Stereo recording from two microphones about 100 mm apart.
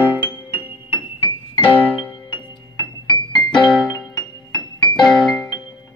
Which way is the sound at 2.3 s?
50° left (ahead or behind).